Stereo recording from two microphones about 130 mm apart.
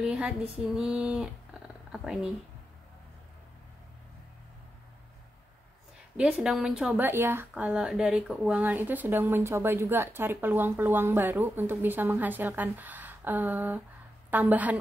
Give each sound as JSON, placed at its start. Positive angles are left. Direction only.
{"t": 0.0, "sound": "speech", "side_deg": -5}
{"t": 6.1, "sound": "speech", "side_deg": -10}